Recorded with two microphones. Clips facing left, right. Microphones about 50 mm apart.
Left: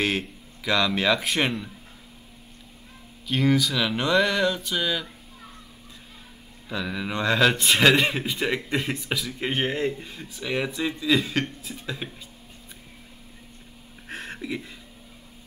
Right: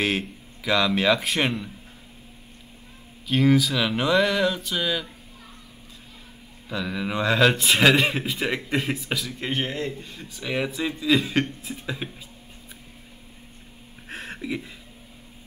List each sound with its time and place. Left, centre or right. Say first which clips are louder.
0.0 s a man's voice: right 1 dB; centre
3.3 s a man's voice: right 2 dB; centre
6.7 s a man's voice: right 1 dB; centre
9.5 s speech: left 3 dB; centre
10.1 s a man's voice: even; centre
14.0 s a sound: right 1 dB; centre